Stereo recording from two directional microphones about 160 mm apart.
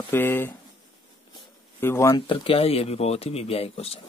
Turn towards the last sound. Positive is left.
turn(degrees=40)  # may be behind; listen again after turning